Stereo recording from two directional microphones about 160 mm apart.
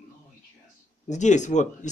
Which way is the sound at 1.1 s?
50° left (ahead or behind).